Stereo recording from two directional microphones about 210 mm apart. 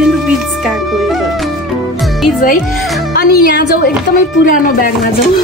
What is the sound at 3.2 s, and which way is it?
A woman's voice, 45° left (ahead or behind).